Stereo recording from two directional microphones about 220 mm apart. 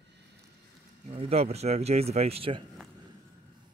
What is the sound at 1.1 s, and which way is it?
Speech, 25° right (ahead or behind).